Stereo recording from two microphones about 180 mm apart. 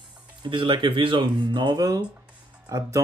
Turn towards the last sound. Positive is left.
turn(degrees=-20)  # may be behind; listen again after turning